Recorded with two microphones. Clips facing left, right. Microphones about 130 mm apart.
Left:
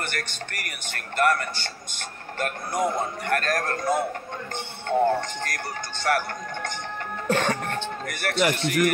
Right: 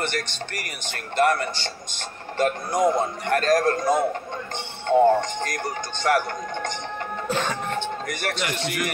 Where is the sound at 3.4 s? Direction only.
35° right (ahead or behind).